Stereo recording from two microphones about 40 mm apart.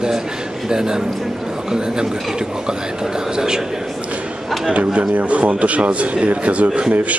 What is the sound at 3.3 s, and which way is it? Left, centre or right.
Speech, centre.